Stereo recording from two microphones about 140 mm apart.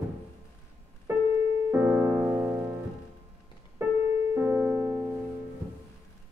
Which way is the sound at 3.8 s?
15° right (ahead or behind).